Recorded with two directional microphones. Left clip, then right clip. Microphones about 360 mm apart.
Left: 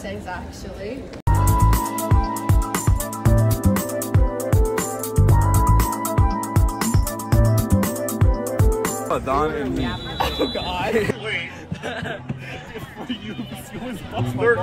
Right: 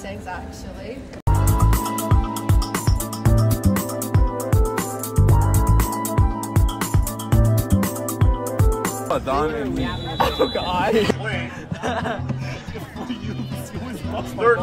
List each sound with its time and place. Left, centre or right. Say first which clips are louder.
1.2 s music: left 3 dB; centre
9.1 s speech: even; centre
9.6 s speech: even; centre
14.2 s speech: right 1 dB; centre